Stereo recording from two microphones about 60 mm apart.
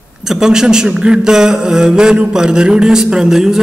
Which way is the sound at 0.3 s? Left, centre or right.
Centre.